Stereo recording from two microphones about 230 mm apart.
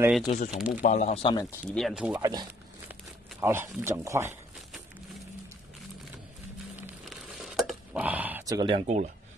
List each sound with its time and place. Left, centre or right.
0.0 s speech: centre
0.3 s speech: left
1.8 s speech: centre
2.1 s speech: centre
6.8 s crumpling: centre; by 9.1 s right